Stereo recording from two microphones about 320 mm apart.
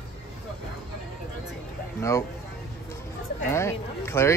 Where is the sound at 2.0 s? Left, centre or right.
Centre.